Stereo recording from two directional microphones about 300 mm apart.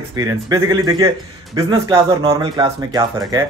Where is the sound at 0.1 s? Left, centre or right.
Centre.